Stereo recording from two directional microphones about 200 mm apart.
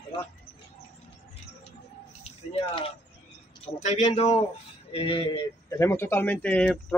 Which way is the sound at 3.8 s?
35° left (ahead or behind).